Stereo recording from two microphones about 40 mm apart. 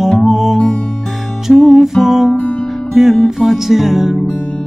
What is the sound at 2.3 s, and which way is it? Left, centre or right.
Music, left.